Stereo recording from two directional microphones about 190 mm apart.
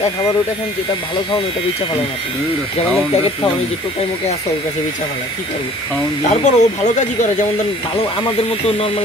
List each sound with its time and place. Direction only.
6.3 s speech: 40° left (ahead or behind)